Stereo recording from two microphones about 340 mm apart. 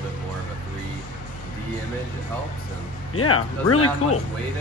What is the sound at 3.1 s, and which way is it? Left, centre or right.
Speech, left.